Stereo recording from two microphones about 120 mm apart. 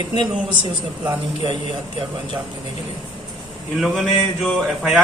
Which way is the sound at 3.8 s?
Centre (ahead or behind).